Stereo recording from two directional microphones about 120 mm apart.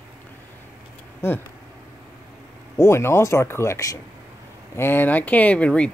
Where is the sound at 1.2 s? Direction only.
20° left (ahead or behind).